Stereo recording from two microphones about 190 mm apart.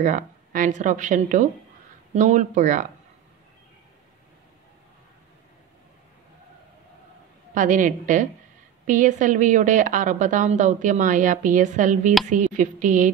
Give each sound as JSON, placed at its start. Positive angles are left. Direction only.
{"t": 0.0, "sound": "a woman's voice", "side_deg": -40}
{"t": 7.5, "sound": "a woman's voice", "side_deg": -40}